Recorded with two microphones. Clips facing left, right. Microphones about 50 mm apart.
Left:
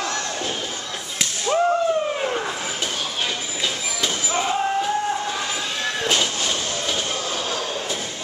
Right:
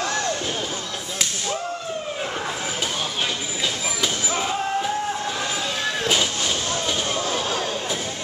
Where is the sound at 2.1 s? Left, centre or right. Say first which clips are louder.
Left 3 dB; centre.